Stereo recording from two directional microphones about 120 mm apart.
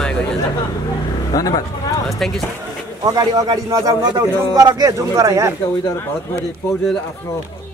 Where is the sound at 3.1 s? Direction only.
30° right (ahead or behind).